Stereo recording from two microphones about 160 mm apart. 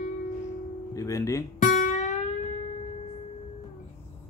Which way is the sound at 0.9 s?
20° left (ahead or behind).